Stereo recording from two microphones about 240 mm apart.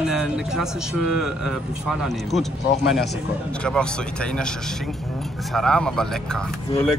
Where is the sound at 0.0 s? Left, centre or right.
Centre.